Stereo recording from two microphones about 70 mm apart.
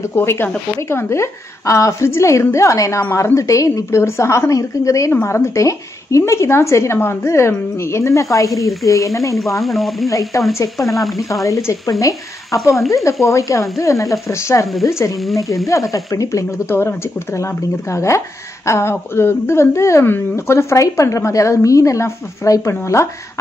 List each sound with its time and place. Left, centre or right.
0.1 s a woman's voice: left
5.1 s a woman's voice: left
9.6 s speech: centre
10.0 s a woman's voice: left
10.9 s speech: centre
11.4 s a woman's voice: left
16.6 s a woman's voice: left